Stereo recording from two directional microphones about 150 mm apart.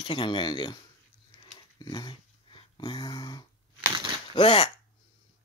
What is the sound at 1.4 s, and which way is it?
Dog, 30° left (ahead or behind).